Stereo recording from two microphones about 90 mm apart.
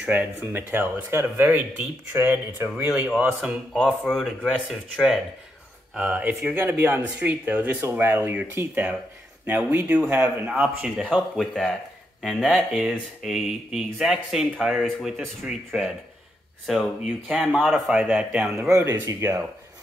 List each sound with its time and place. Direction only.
0.0 s speech: 20° right (ahead or behind)
2.7 s speech: 10° right (ahead or behind)
3.7 s speech: 5° left (ahead or behind)
5.9 s speech: 15° right (ahead or behind)
11.3 s speech: centre (ahead or behind)
18.0 s speech: 15° right (ahead or behind)
18.7 s speech: 35° right (ahead or behind)